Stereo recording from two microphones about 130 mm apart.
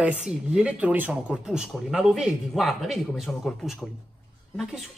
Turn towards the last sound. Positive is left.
turn(degrees=0)  # may be behind; listen again after turning